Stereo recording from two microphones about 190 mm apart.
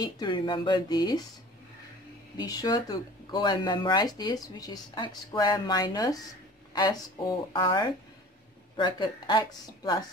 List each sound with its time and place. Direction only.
0.0 s speech: 25° left (ahead or behind)
2.3 s speech: 20° left (ahead or behind)